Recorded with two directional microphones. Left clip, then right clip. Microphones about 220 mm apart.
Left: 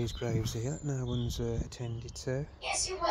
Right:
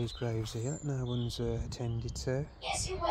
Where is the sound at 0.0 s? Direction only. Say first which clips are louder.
Left 2 dB; 10° left (ahead or behind); by 2.5 s 5° right (ahead or behind).